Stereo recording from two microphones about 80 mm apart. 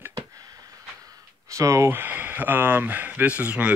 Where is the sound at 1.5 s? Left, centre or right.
Right.